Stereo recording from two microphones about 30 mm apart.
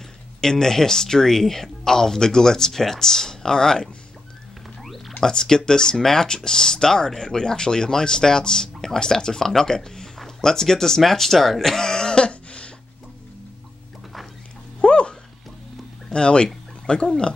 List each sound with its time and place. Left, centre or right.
0.4 s speech: centre
4.8 s a sound: centre
5.2 s speech: left
6.2 s speech: left; by 11.7 s centre
11.7 s a sound: centre; by 12.7 s left
14.8 s dog: left
16.1 s speech: left